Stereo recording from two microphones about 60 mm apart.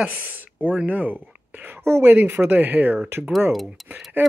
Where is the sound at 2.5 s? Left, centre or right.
Right.